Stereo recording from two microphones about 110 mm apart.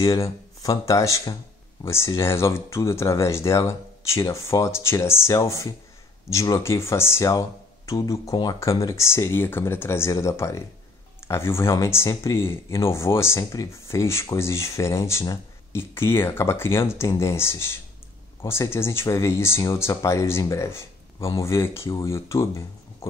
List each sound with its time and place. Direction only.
0.0 s speech: 30° left (ahead or behind)